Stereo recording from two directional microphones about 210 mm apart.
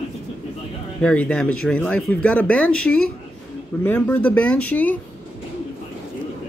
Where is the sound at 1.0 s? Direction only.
5° left (ahead or behind).